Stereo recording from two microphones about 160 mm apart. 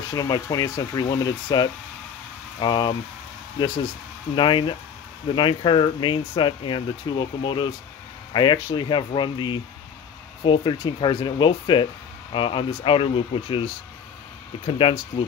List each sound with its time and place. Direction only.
0.1 s speech: 25° left (ahead or behind)
4.4 s speech: 30° left (ahead or behind)
14.8 s speech: 35° left (ahead or behind)